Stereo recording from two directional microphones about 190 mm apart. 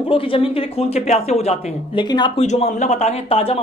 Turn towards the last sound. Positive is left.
turn(degrees=30)  # may be behind; listen again after turning